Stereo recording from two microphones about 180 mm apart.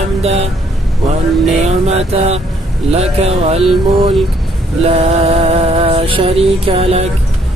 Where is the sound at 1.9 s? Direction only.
35° right (ahead or behind).